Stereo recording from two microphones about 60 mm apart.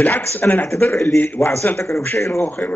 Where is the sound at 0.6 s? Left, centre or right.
Left.